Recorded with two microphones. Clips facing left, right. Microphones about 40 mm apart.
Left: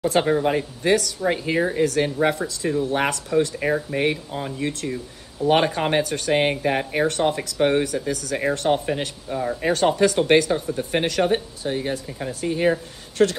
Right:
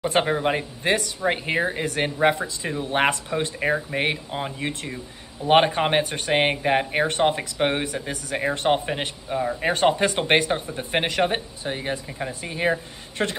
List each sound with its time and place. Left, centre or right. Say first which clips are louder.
0.2 s speech: left 2 dB; right
1.6 s speech: left 4 dB; right
3.5 s speech: left 1 dB; centre
3.9 s speech: left 2 dB; right